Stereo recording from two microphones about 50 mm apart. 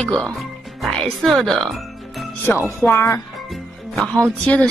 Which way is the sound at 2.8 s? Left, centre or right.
Left.